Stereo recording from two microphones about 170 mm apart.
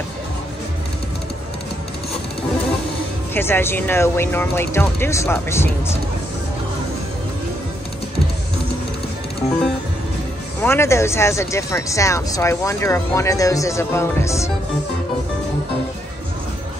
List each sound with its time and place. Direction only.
3.3 s speech: 15° left (ahead or behind)
10.6 s speech: 15° left (ahead or behind)